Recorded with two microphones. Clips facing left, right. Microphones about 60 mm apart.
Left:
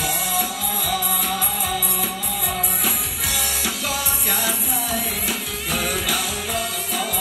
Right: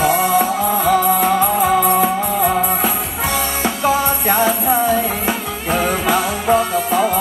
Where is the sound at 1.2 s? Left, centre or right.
Right.